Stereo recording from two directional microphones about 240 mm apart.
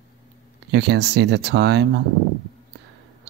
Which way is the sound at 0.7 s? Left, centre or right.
Right.